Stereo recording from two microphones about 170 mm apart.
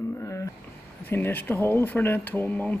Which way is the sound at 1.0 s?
10° left (ahead or behind).